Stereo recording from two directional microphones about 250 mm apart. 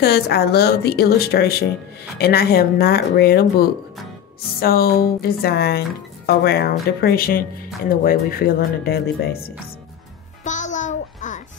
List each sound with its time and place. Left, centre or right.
0.0 s speech: left
10.4 s music: left